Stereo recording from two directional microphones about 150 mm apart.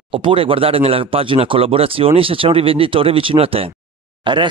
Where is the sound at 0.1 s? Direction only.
35° right (ahead or behind).